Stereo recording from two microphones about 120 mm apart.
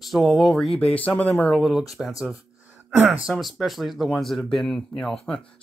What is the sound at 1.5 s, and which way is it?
Speech, centre (ahead or behind).